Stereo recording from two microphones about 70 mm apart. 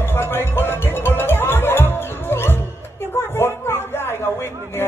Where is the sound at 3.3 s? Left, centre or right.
Left.